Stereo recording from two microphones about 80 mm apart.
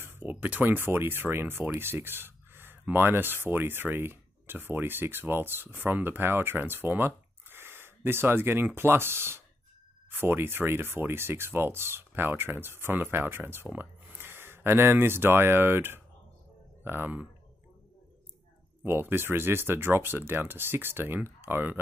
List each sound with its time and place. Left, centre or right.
0.0 s speech: right
18.9 s speech: right